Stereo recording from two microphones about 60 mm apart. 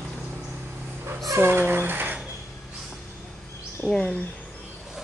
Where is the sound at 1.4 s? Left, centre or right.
Right.